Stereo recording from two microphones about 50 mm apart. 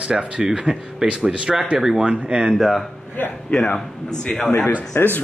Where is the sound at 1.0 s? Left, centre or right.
Right.